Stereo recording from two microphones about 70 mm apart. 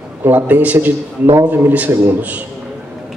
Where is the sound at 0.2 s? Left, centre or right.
Right.